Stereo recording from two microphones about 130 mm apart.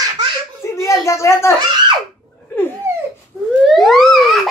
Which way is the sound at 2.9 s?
20° right (ahead or behind).